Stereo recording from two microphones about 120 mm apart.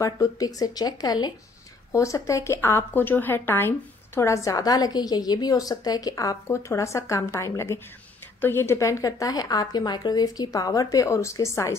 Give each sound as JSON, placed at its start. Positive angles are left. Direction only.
{"t": 0.0, "sound": "a woman's voice", "side_deg": 30}